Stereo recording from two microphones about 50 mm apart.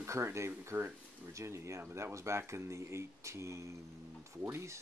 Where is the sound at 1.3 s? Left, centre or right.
Right.